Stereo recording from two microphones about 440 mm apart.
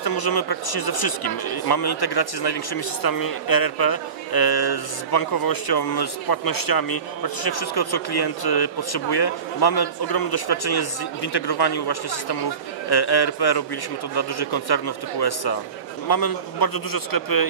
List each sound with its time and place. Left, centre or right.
0.0 s speech: left